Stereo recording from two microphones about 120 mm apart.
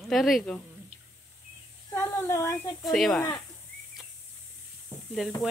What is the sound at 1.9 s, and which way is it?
Speech, 20° left (ahead or behind).